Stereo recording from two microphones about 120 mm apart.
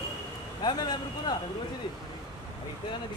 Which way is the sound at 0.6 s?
35° left (ahead or behind).